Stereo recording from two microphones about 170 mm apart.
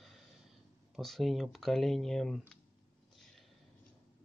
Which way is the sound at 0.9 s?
Centre (ahead or behind).